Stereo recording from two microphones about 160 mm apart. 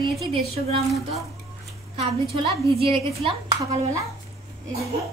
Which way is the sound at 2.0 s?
35° right (ahead or behind).